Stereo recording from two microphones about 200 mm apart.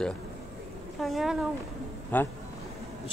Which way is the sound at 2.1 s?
10° left (ahead or behind).